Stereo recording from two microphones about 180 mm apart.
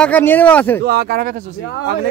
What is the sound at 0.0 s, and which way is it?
Speech, 10° left (ahead or behind).